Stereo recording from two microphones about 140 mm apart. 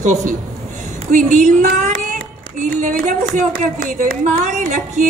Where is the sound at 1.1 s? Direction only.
60° right (ahead or behind).